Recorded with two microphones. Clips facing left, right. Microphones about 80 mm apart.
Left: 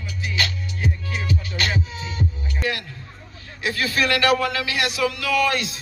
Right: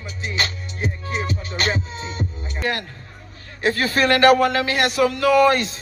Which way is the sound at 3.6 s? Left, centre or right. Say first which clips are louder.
Right 4 dB; right.